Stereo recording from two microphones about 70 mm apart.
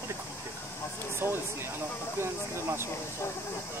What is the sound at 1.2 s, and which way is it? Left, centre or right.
Speech, right.